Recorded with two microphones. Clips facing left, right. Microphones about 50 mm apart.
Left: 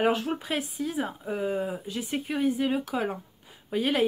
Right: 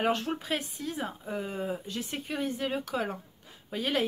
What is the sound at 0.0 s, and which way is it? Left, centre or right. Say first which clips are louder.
Speech: left 3 dB; centre.